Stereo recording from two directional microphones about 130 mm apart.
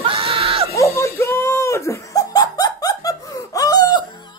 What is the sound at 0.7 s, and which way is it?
Laughter, 25° left (ahead or behind).